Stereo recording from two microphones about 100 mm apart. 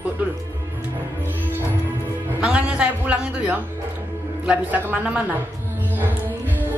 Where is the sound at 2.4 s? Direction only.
10° right (ahead or behind).